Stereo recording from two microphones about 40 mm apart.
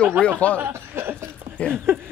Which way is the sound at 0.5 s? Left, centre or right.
Right.